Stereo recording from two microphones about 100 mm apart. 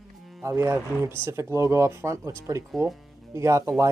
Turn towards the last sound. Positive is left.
turn(degrees=-30)  # may be behind; listen again after turning